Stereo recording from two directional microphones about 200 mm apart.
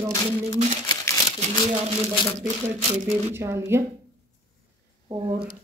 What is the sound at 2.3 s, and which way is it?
Speech, 35° right (ahead or behind).